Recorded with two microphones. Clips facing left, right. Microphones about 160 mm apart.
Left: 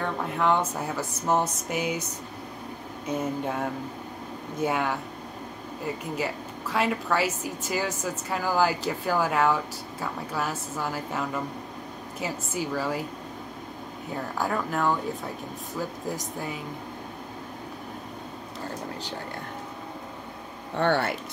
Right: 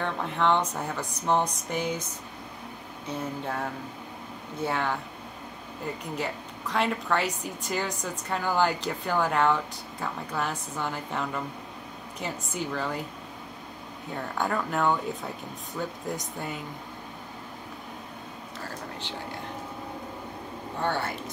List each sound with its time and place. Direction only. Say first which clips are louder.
0.0 s a woman's voice: left 1 dB; 5° left (ahead or behind)
3.1 s speech: left 4 dB; 10° left (ahead or behind)
4.6 s a woman's voice: left 2 dB; 10° left (ahead or behind)
14.1 s a woman's voice: even; 5° left (ahead or behind)
20.8 s speech: left 5 dB; 70° left (ahead or behind)